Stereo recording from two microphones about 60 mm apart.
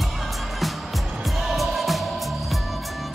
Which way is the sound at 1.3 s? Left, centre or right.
Centre.